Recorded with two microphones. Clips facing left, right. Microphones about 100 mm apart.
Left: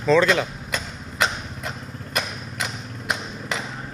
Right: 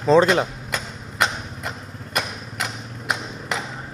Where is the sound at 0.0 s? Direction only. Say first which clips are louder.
Right 2 dB; 35° right (ahead or behind).